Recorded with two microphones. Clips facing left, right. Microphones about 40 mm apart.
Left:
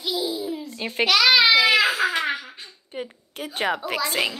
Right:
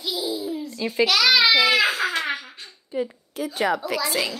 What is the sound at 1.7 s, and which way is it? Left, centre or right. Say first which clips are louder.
Crying: left 1 dB; centre.